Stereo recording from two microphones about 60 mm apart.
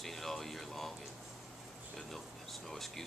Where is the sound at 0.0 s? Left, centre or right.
Centre.